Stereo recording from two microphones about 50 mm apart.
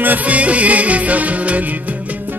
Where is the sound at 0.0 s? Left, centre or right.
Right.